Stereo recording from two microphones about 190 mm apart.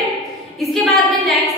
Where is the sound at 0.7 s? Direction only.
Centre (ahead or behind).